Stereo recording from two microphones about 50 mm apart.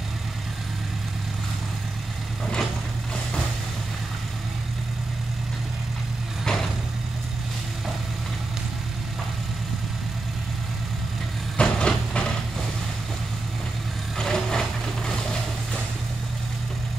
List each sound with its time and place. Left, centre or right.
6.4 s vehicle: centre
11.5 s vehicle: centre
14.1 s vehicle: centre